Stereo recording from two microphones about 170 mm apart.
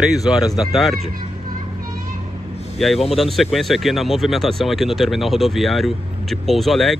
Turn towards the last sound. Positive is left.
turn(degrees=0)  # may be behind; listen again after turning